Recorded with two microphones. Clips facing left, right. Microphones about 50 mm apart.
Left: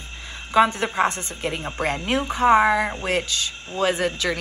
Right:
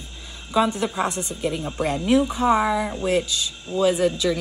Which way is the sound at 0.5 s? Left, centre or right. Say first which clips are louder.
Left 3 dB; left.